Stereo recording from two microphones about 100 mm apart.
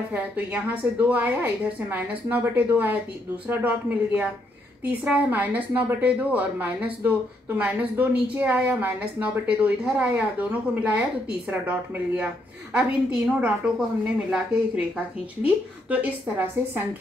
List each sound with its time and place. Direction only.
0.1 s a woman's voice: 15° right (ahead or behind)